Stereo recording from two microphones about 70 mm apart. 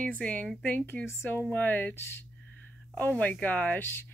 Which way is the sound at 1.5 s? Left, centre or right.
Left.